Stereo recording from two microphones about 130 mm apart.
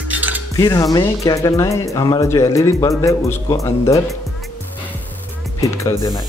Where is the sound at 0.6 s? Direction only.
30° left (ahead or behind).